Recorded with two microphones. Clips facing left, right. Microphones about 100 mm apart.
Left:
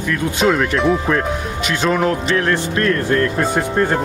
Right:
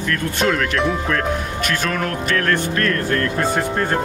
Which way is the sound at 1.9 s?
20° left (ahead or behind).